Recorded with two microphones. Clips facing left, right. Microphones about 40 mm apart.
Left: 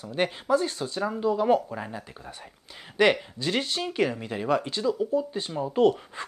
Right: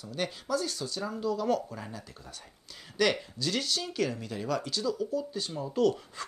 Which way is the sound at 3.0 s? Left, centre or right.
Left.